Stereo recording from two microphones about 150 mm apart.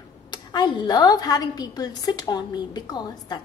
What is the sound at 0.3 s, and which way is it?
A woman's voice, 30° left (ahead or behind).